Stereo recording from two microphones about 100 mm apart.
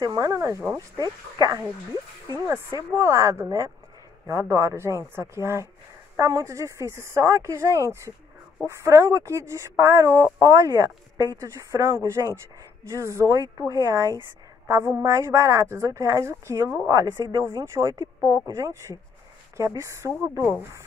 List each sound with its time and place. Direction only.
0.0 s speech: 35° right (ahead or behind)
1.4 s speech: 40° right (ahead or behind)
2.9 s a woman's voice: 30° right (ahead or behind)
14.7 s a woman's voice: 25° right (ahead or behind)